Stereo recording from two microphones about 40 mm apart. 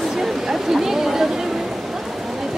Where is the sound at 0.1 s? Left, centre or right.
Centre.